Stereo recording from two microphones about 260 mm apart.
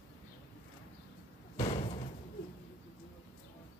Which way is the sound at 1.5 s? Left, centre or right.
Left.